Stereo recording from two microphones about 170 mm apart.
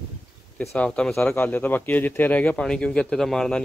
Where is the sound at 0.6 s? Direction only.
5° left (ahead or behind).